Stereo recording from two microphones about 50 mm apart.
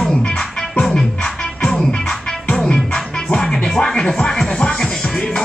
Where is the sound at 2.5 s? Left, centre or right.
Centre.